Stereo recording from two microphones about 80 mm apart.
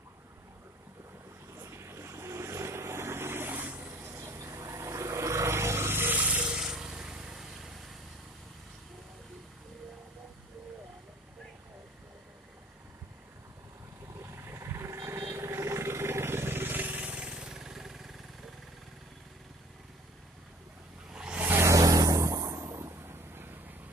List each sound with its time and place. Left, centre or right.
1.6 s vehicle: right; by 8.0 s centre
14.2 s vehicle: right; by 18.1 s centre
21.1 s vehicle: centre
21.4 s vehicle: right
21.6 s vehicle: right